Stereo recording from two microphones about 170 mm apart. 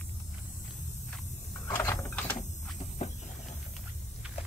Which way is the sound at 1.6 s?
15° left (ahead or behind).